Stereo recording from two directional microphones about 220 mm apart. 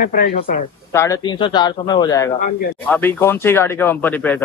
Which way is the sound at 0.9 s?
15° left (ahead or behind).